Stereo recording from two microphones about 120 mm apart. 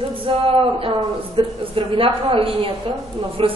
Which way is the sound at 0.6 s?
45° right (ahead or behind).